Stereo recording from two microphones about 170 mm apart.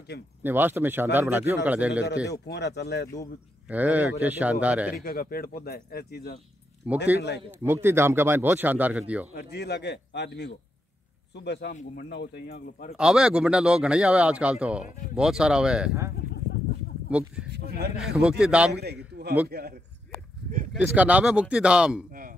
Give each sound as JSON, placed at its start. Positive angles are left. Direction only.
{"t": 0.4, "sound": "speech", "side_deg": -10}
{"t": 2.4, "sound": "speech", "side_deg": 75}
{"t": 3.6, "sound": "speech", "side_deg": -10}
{"t": 5.0, "sound": "speech", "side_deg": 60}
{"t": 6.8, "sound": "speech", "side_deg": -10}
{"t": 7.2, "sound": "speech", "side_deg": 85}
{"t": 7.6, "sound": "speech", "side_deg": -15}
{"t": 9.3, "sound": "speech", "side_deg": 70}
{"t": 12.9, "sound": "speech", "side_deg": -5}
{"t": 17.1, "sound": "speech", "side_deg": -5}
{"t": 17.5, "sound": "speech", "side_deg": -70}
{"t": 17.9, "sound": "speech", "side_deg": -5}
{"t": 18.7, "sound": "speech", "side_deg": -70}
{"t": 20.7, "sound": "speech", "side_deg": -10}